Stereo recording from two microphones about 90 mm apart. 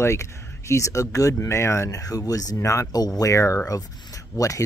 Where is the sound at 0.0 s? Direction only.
30° left (ahead or behind).